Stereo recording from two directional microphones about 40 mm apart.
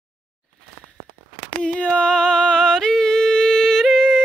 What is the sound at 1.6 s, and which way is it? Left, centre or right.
Yodeling, left.